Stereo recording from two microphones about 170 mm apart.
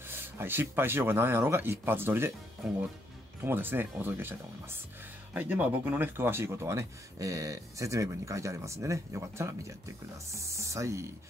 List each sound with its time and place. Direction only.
0.1 s speech: 10° right (ahead or behind)
3.4 s speech: 10° right (ahead or behind)